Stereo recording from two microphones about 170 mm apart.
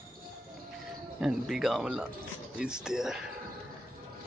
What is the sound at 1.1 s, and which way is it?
Speech, 5° right (ahead or behind).